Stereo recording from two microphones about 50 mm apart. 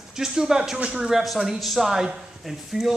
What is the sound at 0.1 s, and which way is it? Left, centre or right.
Speech, centre.